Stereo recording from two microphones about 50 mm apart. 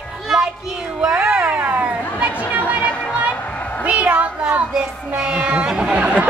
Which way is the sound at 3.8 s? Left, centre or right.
Right.